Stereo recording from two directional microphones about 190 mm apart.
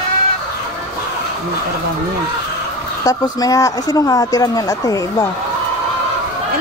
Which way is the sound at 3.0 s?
20° left (ahead or behind).